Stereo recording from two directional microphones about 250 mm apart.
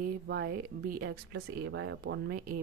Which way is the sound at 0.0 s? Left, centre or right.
Right.